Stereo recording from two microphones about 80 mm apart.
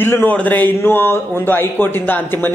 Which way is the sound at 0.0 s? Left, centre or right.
Left.